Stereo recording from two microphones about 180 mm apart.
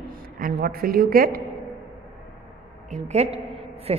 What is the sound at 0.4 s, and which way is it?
A woman's voice, 55° right (ahead or behind).